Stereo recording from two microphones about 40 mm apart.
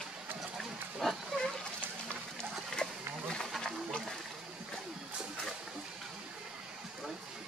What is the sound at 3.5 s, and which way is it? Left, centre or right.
Wild animals, centre.